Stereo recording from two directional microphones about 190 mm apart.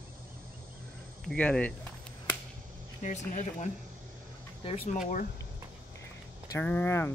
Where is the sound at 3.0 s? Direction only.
40° left (ahead or behind).